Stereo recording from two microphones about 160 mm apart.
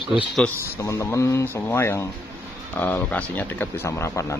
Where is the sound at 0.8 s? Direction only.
20° left (ahead or behind).